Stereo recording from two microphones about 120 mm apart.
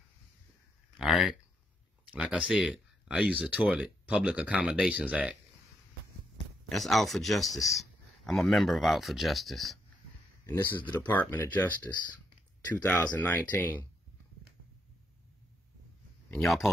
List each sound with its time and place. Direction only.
0.9 s speech: centre (ahead or behind)
6.7 s speech: centre (ahead or behind)
10.4 s speech: 20° left (ahead or behind)
16.3 s speech: centre (ahead or behind)